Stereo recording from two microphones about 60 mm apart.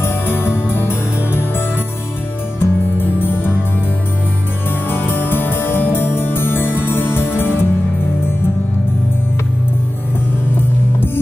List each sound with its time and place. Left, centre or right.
0.0 s music: left
2.6 s music: left
4.8 s music: left